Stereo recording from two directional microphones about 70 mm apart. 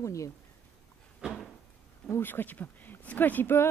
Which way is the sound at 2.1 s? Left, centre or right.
Left.